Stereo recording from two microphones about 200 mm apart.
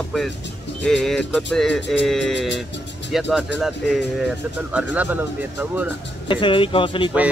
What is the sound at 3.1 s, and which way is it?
Speech, 5° right (ahead or behind).